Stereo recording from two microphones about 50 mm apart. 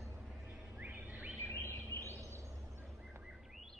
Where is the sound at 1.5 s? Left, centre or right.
Left.